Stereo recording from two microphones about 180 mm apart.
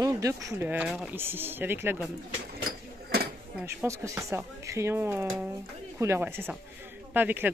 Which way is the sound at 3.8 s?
15° right (ahead or behind).